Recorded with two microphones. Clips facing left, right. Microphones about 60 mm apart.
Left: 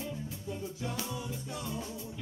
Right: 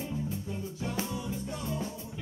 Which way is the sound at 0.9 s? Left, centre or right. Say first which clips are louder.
Right 4 dB; right.